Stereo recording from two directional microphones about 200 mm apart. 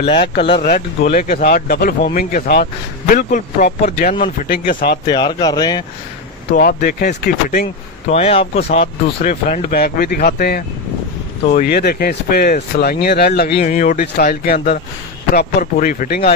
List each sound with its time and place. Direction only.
0.0 s speech: 30° left (ahead or behind)
0.7 s speech: 40° left (ahead or behind)
5.0 s speech: 20° left (ahead or behind)
6.5 s speech: 45° left (ahead or behind)
8.1 s speech: 30° left (ahead or behind)